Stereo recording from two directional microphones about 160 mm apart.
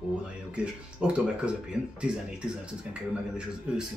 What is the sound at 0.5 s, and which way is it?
Speech, 5° right (ahead or behind).